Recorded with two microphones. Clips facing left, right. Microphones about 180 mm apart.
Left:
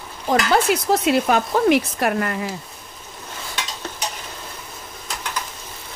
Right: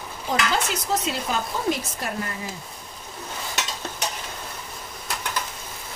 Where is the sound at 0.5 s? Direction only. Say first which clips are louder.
Left 7 dB; 60° left (ahead or behind).